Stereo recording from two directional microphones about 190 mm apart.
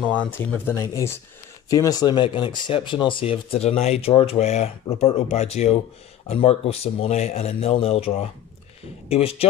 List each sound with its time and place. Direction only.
0.0 s speech: 10° left (ahead or behind); by 9.5 s 30° left (ahead or behind)